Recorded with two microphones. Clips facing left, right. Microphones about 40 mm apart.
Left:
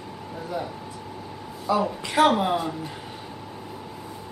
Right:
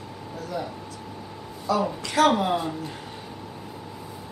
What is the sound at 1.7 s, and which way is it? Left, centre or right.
Speech, centre.